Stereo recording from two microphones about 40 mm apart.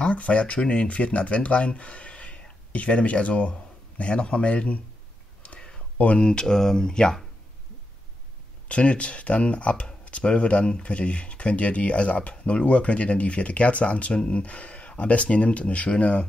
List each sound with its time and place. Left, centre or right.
0.1 s speech: left
5.9 s speech: left
6.2 s speech: centre
8.6 s speech: left